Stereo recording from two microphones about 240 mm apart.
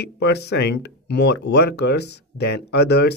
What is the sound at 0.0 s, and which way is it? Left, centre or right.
Speech, left.